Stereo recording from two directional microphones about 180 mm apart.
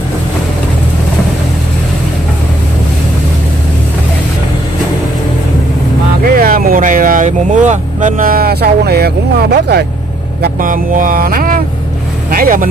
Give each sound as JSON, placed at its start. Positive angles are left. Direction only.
{"t": 6.3, "sound": "speech", "side_deg": -50}
{"t": 10.4, "sound": "mantra", "side_deg": -50}